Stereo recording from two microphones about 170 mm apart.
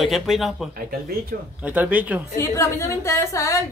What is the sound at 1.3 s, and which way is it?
Speech, 65° right (ahead or behind).